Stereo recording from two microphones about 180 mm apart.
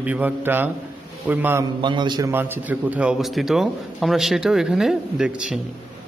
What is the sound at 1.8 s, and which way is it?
Speech, 25° right (ahead or behind).